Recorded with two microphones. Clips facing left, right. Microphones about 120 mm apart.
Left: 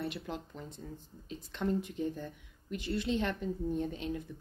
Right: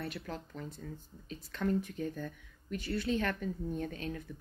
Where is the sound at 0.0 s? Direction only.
20° left (ahead or behind).